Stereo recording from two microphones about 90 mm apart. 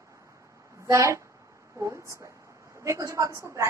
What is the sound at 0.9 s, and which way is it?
A woman's voice, 35° right (ahead or behind).